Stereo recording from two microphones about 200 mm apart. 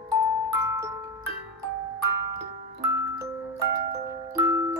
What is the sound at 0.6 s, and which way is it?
Music, 15° right (ahead or behind).